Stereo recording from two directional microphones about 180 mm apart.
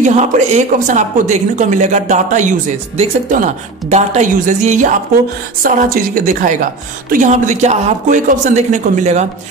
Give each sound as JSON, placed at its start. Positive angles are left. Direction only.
{"t": 0.0, "sound": "speech", "side_deg": -40}